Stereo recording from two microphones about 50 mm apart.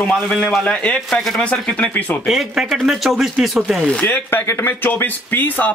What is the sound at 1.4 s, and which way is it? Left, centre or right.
Speech, left.